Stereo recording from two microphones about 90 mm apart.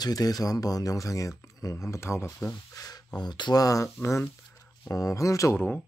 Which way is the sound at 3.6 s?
35° left (ahead or behind).